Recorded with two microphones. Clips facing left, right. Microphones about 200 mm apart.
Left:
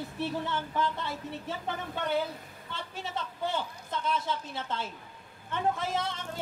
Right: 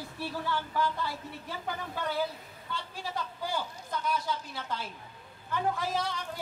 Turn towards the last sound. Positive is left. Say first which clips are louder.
# even
turn(degrees=25)  # may be behind; listen again after turning